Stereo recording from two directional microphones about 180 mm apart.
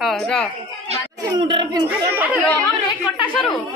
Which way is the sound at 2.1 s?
10° right (ahead or behind).